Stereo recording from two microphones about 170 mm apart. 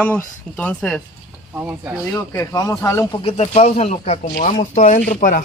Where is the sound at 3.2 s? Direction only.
35° left (ahead or behind).